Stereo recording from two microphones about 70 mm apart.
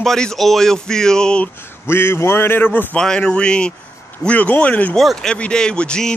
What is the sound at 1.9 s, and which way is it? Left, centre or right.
A man's voice, left.